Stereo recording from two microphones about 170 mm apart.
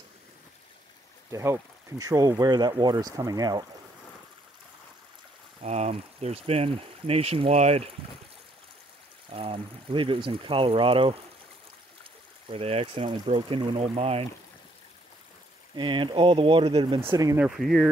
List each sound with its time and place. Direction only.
1.3 s speech: 15° right (ahead or behind)
5.6 s speech: 40° right (ahead or behind)
9.3 s speech: 30° right (ahead or behind)
15.7 s speech: 30° right (ahead or behind)
17.1 s speech: 20° right (ahead or behind)
17.4 s speech: centre (ahead or behind)